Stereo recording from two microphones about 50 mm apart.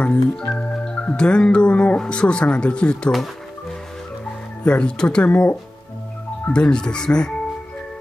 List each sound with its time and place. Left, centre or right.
0.0 s music: left
4.6 s music: left
6.5 s speech: centre